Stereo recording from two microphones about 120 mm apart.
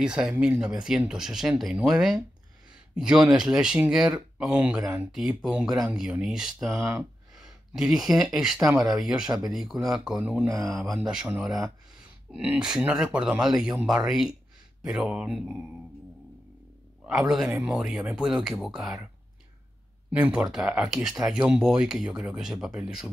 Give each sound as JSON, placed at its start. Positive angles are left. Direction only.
{"t": 0.0, "sound": "speech", "side_deg": -10}
{"t": 6.8, "sound": "speech", "side_deg": -20}
{"t": 7.3, "sound": "speech", "side_deg": -5}
{"t": 17.0, "sound": "a man's voice", "side_deg": -5}
{"t": 20.1, "sound": "speech", "side_deg": -10}